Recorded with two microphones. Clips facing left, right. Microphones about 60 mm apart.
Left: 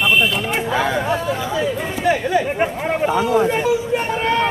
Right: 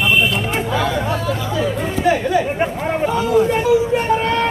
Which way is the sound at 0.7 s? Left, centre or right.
Left.